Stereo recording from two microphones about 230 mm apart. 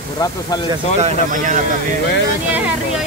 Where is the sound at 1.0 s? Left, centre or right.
Right.